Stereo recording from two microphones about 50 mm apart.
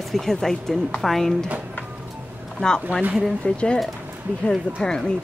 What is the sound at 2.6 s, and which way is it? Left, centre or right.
A woman's voice, centre.